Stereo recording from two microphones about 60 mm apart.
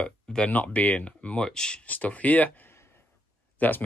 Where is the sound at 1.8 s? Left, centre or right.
Left.